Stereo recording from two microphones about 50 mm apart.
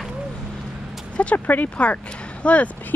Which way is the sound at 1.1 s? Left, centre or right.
Left.